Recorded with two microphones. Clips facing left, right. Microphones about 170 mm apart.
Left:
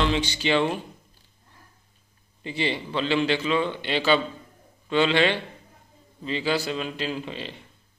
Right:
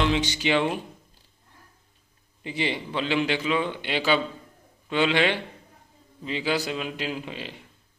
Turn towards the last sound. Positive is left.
turn(degrees=-10)  # may be behind; listen again after turning